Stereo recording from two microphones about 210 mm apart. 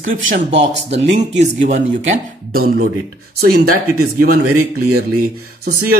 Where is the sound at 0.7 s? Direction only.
30° right (ahead or behind).